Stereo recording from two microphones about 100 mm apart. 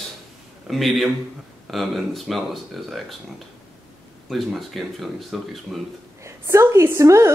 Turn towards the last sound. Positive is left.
turn(degrees=-30)  # may be behind; listen again after turning